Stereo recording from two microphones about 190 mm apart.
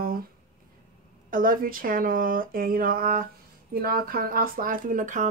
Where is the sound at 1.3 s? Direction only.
45° right (ahead or behind).